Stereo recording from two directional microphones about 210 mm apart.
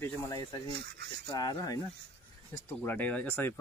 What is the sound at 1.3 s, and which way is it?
Speech, 15° left (ahead or behind).